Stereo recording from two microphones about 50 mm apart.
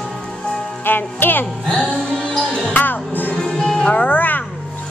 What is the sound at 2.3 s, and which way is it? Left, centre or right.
Music, centre.